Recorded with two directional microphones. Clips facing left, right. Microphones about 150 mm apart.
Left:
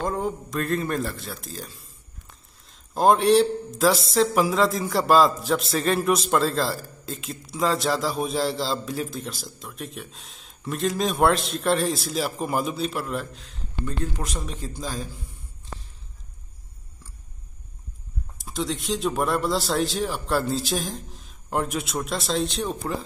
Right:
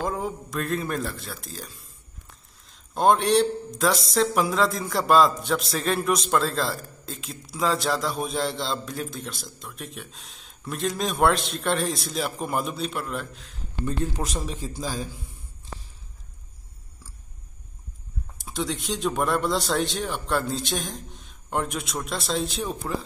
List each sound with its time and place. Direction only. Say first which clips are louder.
0.0 s a man's voice: left 2 dB; centre (ahead or behind)
13.8 s speech: right 3 dB; 30° right (ahead or behind)
14.4 s a man's voice: right 1 dB; centre (ahead or behind)
18.4 s a man's voice: left 1 dB; centre (ahead or behind)